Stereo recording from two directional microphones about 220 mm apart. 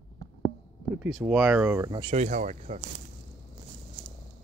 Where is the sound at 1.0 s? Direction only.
5° right (ahead or behind).